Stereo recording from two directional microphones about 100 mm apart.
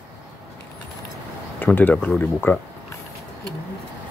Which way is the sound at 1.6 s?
20° left (ahead or behind).